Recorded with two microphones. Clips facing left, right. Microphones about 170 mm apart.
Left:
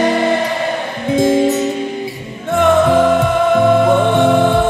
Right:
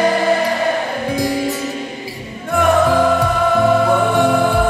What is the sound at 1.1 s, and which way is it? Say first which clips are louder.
Music: left 9 dB; 20° left (ahead or behind).